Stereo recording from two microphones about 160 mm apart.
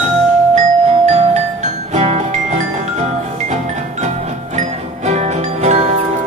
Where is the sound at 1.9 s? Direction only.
40° right (ahead or behind).